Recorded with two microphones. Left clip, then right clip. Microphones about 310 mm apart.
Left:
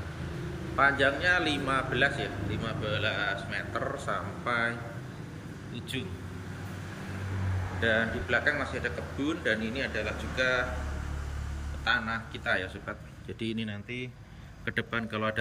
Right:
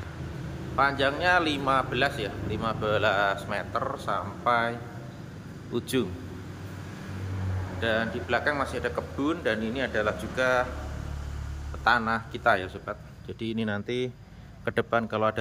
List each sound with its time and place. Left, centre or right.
0.7 s speech: centre
5.8 s speech: centre
7.8 s speech: centre
11.8 s speech: centre